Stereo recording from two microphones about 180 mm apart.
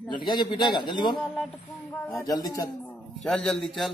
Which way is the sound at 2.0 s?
15° left (ahead or behind).